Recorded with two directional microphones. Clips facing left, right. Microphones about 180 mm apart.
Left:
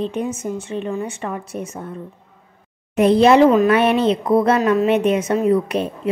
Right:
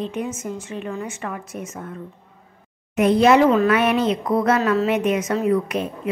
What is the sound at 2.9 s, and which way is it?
A woman's voice, 30° left (ahead or behind).